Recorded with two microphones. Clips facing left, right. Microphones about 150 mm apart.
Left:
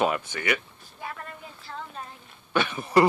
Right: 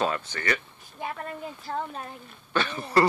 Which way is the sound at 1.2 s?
45° right (ahead or behind).